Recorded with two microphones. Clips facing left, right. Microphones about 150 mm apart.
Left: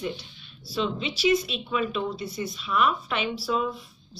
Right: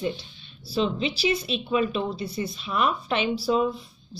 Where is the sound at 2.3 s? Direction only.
30° right (ahead or behind).